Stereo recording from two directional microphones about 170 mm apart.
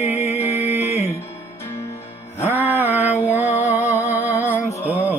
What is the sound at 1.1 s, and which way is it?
Music, 15° left (ahead or behind).